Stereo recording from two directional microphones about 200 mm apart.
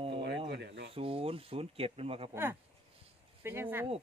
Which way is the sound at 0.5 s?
60° right (ahead or behind).